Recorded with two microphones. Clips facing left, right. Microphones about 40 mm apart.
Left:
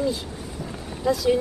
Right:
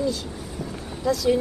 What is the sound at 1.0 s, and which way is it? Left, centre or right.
Speech, centre.